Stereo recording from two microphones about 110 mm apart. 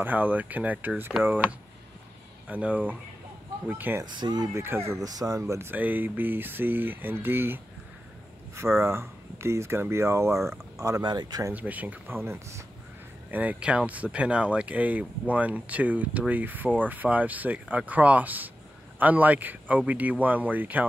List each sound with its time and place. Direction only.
0.0 s speech: 15° right (ahead or behind)
2.4 s speech: 15° right (ahead or behind)
4.0 s speech: 40° right (ahead or behind)
4.6 s speech: 20° right (ahead or behind)
5.0 s speech: 35° right (ahead or behind)
11.0 s speech: 40° right (ahead or behind)
11.5 s speech: 15° right (ahead or behind)